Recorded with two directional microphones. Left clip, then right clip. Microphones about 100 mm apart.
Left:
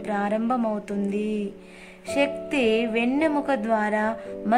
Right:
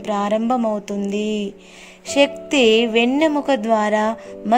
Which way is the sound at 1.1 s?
30° right (ahead or behind).